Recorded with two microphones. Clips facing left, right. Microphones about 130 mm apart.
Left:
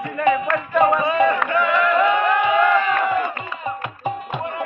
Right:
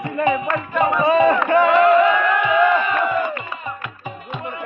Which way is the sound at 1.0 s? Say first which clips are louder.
Right 3 dB; 30° right (ahead or behind).